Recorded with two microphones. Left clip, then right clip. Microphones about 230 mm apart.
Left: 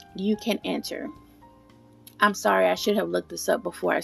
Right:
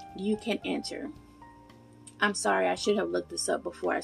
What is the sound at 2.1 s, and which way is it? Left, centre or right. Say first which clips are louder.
A woman's voice: left 6 dB; left.